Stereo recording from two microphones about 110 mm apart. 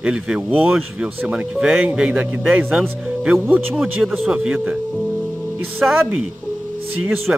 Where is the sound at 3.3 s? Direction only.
20° right (ahead or behind).